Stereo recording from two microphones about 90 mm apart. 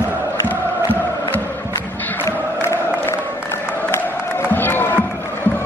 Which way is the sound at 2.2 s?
30° left (ahead or behind).